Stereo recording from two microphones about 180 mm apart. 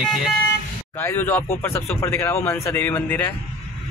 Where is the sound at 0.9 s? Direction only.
10° left (ahead or behind).